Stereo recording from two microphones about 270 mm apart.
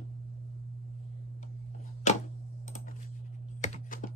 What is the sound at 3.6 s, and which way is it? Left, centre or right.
Computer keyboard, left.